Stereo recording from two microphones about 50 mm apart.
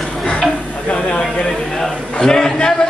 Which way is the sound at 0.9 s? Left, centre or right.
Left.